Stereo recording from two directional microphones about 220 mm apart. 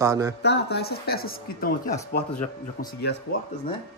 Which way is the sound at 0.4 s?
50° left (ahead or behind).